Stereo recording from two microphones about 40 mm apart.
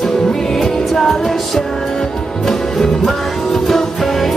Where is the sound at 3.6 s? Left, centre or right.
Centre.